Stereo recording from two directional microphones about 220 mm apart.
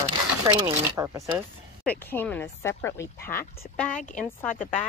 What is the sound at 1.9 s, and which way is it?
Speech, 10° left (ahead or behind).